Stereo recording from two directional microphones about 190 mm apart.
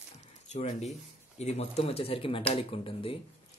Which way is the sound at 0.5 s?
35° left (ahead or behind).